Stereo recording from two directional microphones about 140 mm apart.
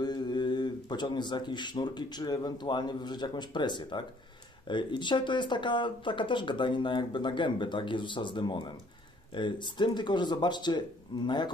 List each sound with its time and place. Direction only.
0.0 s speech: 30° left (ahead or behind)